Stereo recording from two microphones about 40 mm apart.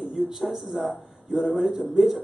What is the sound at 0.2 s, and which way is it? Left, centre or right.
Speech, centre.